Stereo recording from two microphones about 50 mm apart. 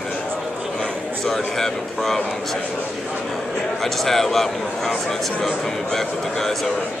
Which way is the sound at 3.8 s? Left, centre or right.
Centre.